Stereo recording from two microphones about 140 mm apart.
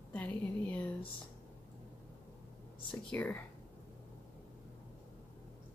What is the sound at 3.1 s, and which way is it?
Speech, 10° left (ahead or behind).